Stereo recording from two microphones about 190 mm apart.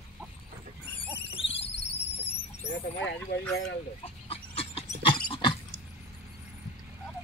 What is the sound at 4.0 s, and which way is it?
Pig, 30° left (ahead or behind).